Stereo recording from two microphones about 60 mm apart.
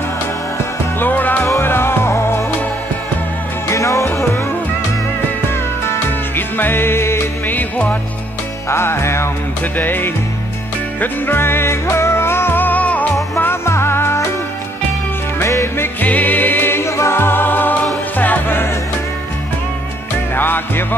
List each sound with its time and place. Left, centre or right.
0.9 s music: left
1.4 s music: left
3.6 s music: left
5.9 s music: left
7.4 s music: left
8.6 s music: left
9.8 s music: left
13.4 s music: left
15.4 s music: left
16.0 s music: left
20.3 s music: left